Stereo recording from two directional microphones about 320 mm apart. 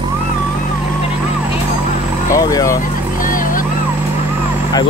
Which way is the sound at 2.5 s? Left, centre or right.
Centre.